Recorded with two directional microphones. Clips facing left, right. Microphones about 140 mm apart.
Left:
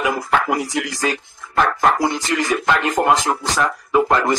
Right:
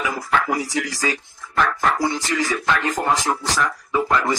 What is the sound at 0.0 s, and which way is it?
Speech, 50° left (ahead or behind).